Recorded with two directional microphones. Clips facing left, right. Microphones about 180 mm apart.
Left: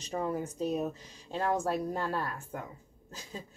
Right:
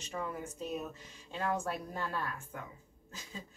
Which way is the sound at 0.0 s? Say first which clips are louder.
Left 6 dB; 35° left (ahead or behind).